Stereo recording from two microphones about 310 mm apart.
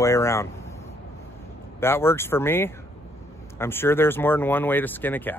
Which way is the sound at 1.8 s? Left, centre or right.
Centre.